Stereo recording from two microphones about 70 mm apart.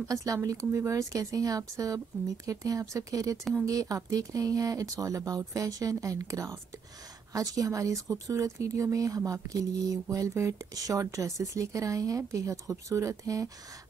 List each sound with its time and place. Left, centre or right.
0.1 s speech: right
10.7 s speech: right